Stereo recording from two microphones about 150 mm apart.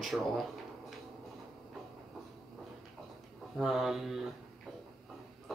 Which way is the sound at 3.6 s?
Centre (ahead or behind).